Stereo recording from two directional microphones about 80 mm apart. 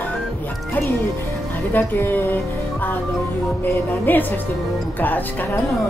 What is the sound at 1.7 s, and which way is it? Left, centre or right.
Speech, left.